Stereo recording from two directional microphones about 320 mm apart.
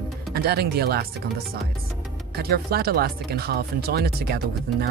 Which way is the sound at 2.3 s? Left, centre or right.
Right.